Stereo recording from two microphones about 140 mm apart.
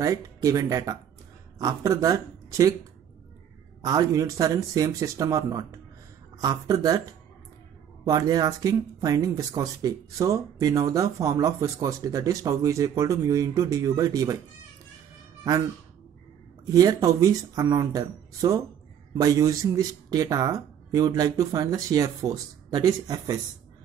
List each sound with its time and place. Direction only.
0.0 s speech: 25° right (ahead or behind)
3.8 s speech: 25° right (ahead or behind)
16.6 s speech: 25° right (ahead or behind)